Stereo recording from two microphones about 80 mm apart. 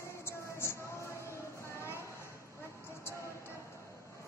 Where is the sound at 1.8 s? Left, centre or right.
Left.